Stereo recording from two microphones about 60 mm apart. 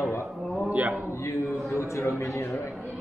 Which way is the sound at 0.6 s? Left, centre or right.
Right.